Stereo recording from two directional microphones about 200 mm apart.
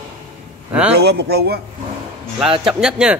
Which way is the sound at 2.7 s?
5° right (ahead or behind).